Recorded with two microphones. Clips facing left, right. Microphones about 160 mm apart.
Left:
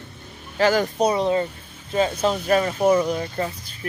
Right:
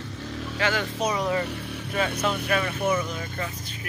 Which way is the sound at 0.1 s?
90° right.